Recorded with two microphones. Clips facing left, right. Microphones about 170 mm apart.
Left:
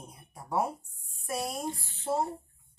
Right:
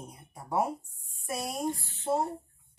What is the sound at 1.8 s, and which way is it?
Speech, centre (ahead or behind).